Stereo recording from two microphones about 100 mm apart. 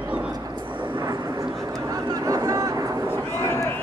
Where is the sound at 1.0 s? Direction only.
35° right (ahead or behind).